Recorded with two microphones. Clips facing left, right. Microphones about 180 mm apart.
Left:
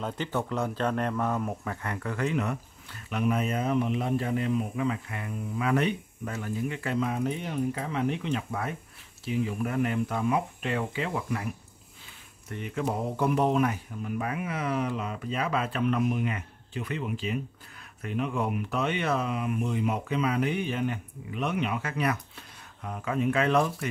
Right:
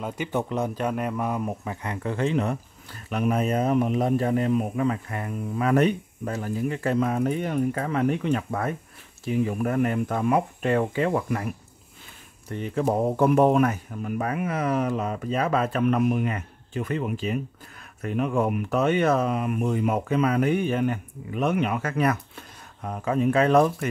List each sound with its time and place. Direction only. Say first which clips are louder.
0.0 s speech: right 3 dB; 15° right (ahead or behind); by 11.4 s 50° right (ahead or behind)
12.4 s speech: right 6 dB; 35° right (ahead or behind)